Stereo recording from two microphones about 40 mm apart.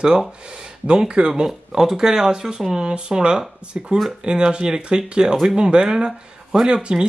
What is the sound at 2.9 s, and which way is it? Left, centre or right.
Speech, right.